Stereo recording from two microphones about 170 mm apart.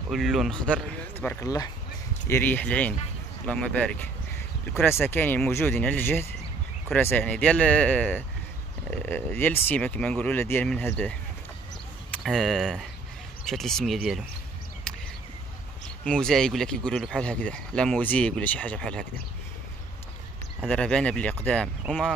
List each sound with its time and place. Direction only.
0.1 s speech: centre (ahead or behind)
5.0 s speech: 10° left (ahead or behind)
14.9 s a sound: 5° left (ahead or behind)
16.0 s speech: 5° left (ahead or behind)
20.6 s speech: 5° left (ahead or behind)